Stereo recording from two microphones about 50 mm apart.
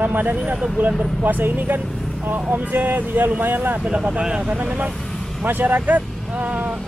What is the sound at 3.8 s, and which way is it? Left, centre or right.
Speech, right.